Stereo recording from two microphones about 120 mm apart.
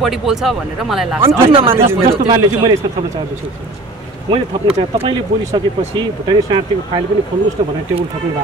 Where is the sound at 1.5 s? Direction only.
50° right (ahead or behind).